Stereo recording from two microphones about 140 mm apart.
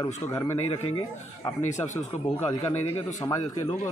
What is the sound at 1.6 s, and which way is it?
Speech, 60° left (ahead or behind).